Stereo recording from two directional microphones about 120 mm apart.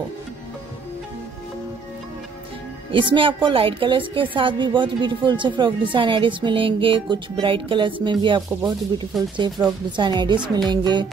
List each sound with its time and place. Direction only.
2.9 s a woman's voice: 45° right (ahead or behind)
8.4 s a woman's voice: 30° right (ahead or behind)